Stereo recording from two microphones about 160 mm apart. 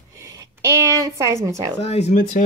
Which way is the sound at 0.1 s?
20° right (ahead or behind).